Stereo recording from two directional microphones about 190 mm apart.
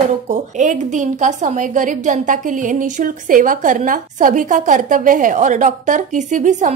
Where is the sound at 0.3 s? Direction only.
40° right (ahead or behind).